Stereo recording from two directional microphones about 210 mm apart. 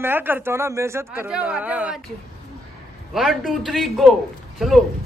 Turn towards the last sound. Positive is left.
turn(degrees=0)  # may be behind; listen again after turning